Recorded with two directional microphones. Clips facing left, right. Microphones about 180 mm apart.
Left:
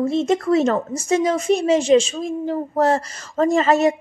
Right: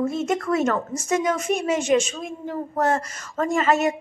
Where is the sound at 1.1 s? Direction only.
30° left (ahead or behind).